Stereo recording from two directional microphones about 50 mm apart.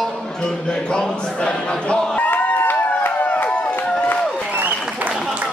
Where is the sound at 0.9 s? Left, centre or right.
Centre.